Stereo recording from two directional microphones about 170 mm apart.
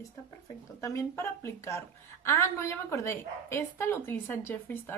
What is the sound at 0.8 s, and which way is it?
A woman's voice, 15° left (ahead or behind).